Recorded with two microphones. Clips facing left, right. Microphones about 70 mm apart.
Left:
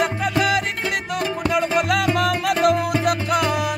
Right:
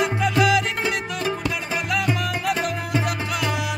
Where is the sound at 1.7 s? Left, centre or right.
Left.